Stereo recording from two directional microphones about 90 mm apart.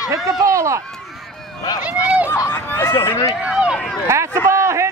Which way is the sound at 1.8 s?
15° right (ahead or behind).